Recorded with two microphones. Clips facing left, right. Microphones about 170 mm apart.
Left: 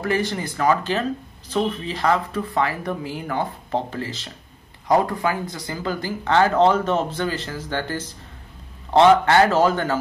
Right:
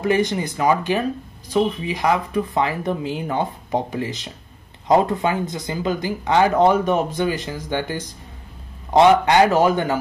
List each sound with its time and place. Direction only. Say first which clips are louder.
0.0 s speech: right 4 dB; 20° right (ahead or behind)